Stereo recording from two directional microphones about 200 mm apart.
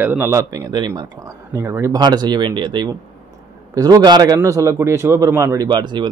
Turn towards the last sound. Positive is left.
turn(degrees=-20)  # may be behind; listen again after turning